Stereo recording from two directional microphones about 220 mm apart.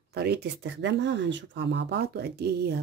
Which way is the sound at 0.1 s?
45° right (ahead or behind).